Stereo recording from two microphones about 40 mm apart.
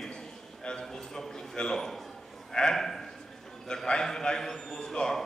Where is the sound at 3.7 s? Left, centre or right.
Left.